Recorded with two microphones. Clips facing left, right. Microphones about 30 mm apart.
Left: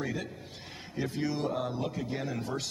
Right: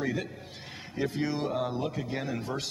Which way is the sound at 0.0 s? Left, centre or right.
Centre.